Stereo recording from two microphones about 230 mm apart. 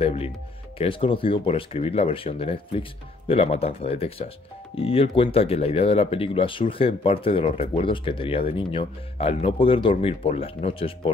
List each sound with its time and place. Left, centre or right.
0.0 s speech: left